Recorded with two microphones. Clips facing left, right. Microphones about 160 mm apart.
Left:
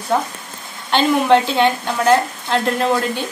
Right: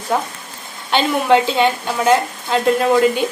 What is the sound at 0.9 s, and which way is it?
A woman's voice, 5° right (ahead or behind).